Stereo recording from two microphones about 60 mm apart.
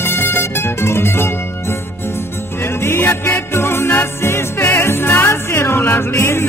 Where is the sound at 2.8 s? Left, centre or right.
Left.